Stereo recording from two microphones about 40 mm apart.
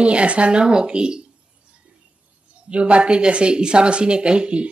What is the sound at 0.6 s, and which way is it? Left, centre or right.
Speech, right.